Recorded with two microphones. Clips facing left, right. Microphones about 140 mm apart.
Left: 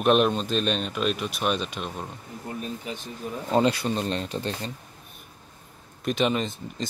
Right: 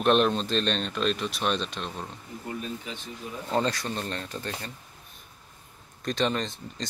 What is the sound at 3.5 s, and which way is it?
Speech, 15° left (ahead or behind).